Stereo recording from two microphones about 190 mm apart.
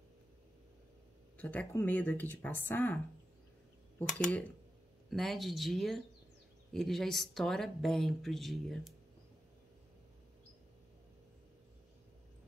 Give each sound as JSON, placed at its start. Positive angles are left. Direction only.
{"t": 1.4, "sound": "speech", "side_deg": 10}
{"t": 4.1, "sound": "speech", "side_deg": 5}